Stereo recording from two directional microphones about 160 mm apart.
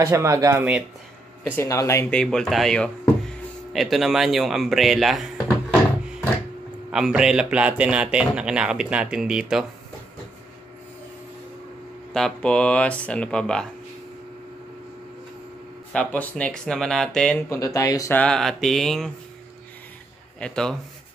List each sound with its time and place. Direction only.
0.0 s speech: 15° right (ahead or behind)
1.6 s speech: 20° left (ahead or behind)
2.0 s a man's voice: 5° left (ahead or behind)
6.9 s a man's voice: 5° right (ahead or behind)
12.1 s speech: 5° left (ahead or behind)
15.9 s a man's voice: 5° left (ahead or behind)
17.5 s speech: 20° left (ahead or behind)
18.1 s a man's voice: 5° left (ahead or behind)
20.3 s a man's voice: 5° left (ahead or behind)